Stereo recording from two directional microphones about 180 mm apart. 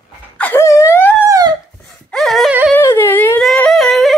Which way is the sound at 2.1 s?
Centre (ahead or behind).